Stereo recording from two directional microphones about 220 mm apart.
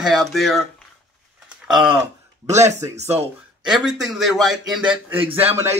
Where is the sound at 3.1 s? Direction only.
5° right (ahead or behind).